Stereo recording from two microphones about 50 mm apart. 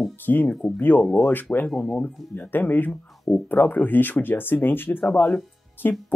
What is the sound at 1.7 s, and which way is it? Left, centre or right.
Speech, centre.